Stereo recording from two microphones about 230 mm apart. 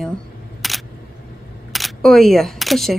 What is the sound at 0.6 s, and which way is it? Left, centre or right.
Single-lens reflex camera, centre.